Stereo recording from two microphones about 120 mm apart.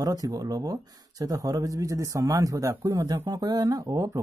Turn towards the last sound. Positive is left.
turn(degrees=-30)  # may be behind; listen again after turning